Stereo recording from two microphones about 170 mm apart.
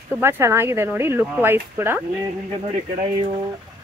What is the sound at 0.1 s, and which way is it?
Speech, 15° right (ahead or behind).